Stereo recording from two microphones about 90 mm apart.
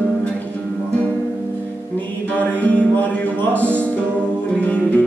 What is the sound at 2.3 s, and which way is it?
Speech, 15° left (ahead or behind).